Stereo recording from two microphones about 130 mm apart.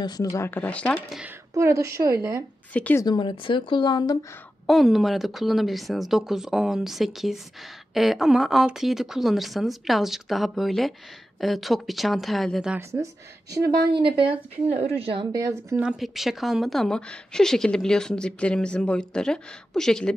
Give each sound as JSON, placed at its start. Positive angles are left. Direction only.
{"t": 0.0, "sound": "speech", "side_deg": 30}
{"t": 0.5, "sound": "speech", "side_deg": 10}
{"t": 1.5, "sound": "a woman's voice", "side_deg": -25}
{"t": 2.7, "sound": "speech", "side_deg": 10}
{"t": 3.0, "sound": "speech", "side_deg": 35}
{"t": 4.6, "sound": "a woman's voice", "side_deg": 0}
{"t": 12.7, "sound": "a woman's voice", "side_deg": -20}
{"t": 13.9, "sound": "a woman's voice", "side_deg": -40}
{"t": 15.3, "sound": "a woman's voice", "side_deg": -25}
{"t": 15.7, "sound": "a woman's voice", "side_deg": -10}